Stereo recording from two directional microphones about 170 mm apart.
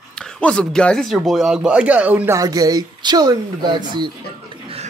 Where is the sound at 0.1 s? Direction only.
5° left (ahead or behind); by 4.1 s 25° right (ahead or behind).